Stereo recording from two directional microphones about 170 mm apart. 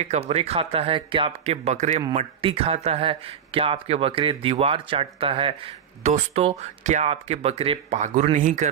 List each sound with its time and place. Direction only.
0.0 s speech: 40° right (ahead or behind)